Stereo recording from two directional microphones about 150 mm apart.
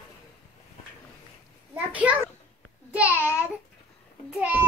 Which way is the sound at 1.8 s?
10° right (ahead or behind).